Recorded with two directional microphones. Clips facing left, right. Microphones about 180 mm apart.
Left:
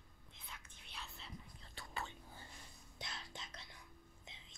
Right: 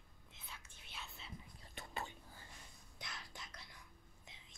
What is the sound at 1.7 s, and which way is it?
Whispering, 20° right (ahead or behind).